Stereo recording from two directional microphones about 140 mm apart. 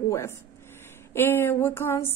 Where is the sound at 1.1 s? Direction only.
15° left (ahead or behind).